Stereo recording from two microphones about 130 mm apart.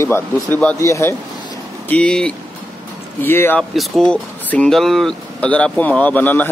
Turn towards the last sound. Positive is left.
turn(degrees=10)  # may be behind; listen again after turning